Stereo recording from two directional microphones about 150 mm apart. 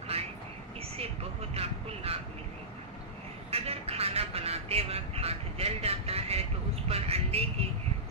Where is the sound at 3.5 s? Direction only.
40° right (ahead or behind).